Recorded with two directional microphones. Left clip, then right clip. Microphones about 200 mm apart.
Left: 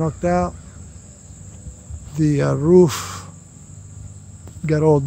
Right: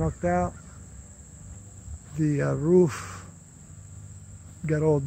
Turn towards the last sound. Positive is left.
turn(degrees=10)  # may be behind; listen again after turning